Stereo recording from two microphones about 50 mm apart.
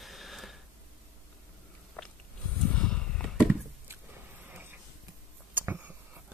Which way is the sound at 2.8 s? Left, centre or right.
Centre.